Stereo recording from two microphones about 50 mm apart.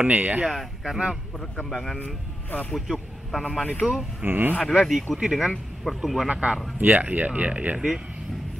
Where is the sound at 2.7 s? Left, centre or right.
Centre.